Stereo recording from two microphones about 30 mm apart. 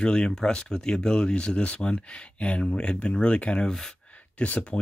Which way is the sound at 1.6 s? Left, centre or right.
Left.